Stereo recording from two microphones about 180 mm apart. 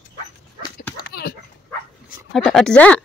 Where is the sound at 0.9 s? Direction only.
60° left (ahead or behind).